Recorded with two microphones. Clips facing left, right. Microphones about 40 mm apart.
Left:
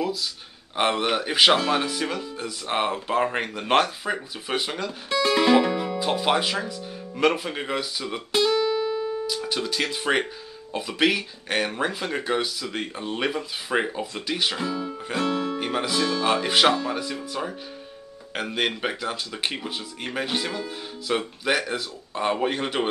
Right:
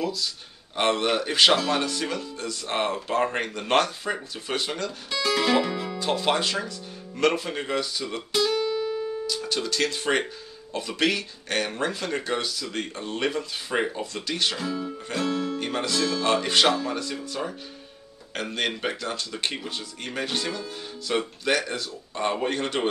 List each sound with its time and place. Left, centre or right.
0.0 s speech: centre
5.1 s speech: left
8.1 s speech: left
8.5 s music: left
9.2 s speech: centre